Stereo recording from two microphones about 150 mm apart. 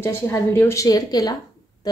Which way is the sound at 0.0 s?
15° left (ahead or behind).